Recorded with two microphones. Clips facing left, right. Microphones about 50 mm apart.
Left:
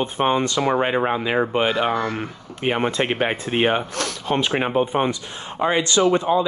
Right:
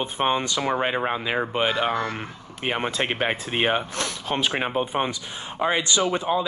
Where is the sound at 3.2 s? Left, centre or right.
Centre.